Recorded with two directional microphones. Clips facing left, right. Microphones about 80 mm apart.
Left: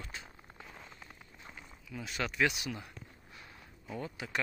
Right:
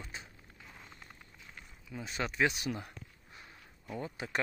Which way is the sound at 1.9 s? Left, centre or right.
Right.